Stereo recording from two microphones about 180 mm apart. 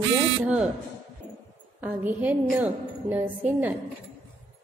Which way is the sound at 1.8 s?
10° right (ahead or behind).